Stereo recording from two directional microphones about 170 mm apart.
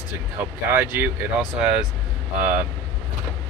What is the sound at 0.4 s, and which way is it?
Speech, 10° right (ahead or behind).